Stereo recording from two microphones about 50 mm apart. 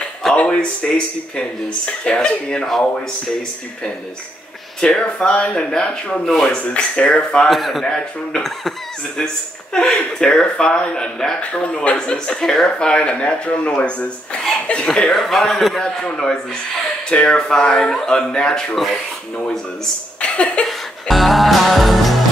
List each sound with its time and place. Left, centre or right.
0.4 s speech: left
4.7 s speech: centre
7.4 s a man's voice: centre
9.8 s a man's voice: centre
15.8 s speech: centre
17.1 s speech: left
20.2 s a sound: left
20.6 s music: centre